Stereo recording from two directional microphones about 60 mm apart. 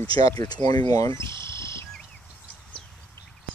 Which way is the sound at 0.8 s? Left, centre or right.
Left.